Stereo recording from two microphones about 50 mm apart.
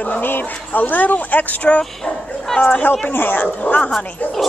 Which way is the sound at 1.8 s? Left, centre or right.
Centre.